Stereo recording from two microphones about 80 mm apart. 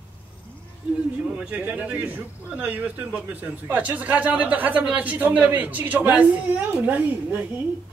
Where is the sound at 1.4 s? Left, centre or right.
Centre.